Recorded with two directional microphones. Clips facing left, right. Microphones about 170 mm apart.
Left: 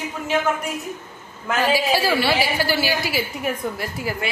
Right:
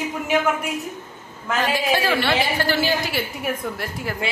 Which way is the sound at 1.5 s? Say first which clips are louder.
Left 2 dB; 5° left (ahead or behind).